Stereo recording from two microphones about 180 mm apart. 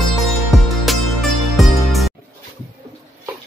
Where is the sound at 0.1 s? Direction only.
Centre (ahead or behind).